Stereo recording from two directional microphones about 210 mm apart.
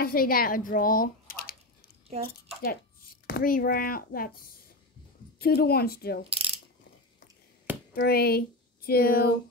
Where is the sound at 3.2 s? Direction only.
45° left (ahead or behind).